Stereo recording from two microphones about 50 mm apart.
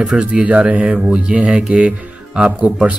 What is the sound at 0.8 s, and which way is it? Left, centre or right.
Speech, centre.